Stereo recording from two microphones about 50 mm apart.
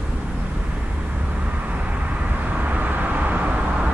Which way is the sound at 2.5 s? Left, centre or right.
Right.